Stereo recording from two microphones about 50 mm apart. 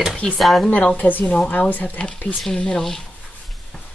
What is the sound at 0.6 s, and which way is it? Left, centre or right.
Speech, left.